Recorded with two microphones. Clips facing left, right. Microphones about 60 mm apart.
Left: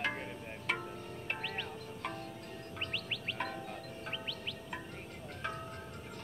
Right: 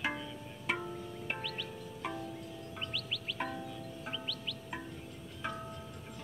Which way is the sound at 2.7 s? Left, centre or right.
Left.